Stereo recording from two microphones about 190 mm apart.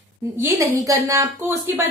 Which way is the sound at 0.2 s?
15° right (ahead or behind).